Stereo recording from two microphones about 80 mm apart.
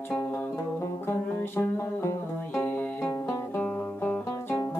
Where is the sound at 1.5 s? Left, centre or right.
Left; by 4.2 s centre.